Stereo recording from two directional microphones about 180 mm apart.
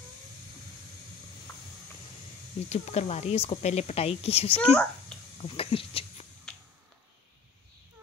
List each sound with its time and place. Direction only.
2.7 s speech: 40° left (ahead or behind)
4.6 s a child's voice: 5° left (ahead or behind)
5.4 s speech: 30° left (ahead or behind)